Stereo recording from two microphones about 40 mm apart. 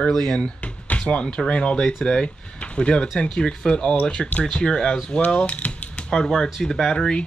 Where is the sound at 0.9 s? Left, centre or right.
Left.